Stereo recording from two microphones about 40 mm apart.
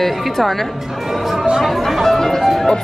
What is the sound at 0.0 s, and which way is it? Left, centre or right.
Speech, centre.